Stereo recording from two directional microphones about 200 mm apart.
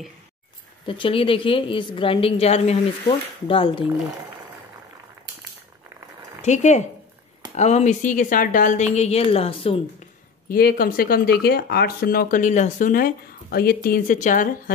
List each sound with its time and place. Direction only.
0.8 s a woman's voice: 25° left (ahead or behind)
6.4 s a woman's voice: 35° left (ahead or behind)
10.5 s speech: 45° left (ahead or behind)